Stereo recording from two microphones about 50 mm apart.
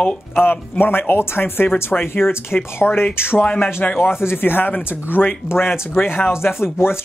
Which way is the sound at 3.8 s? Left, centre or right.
Left.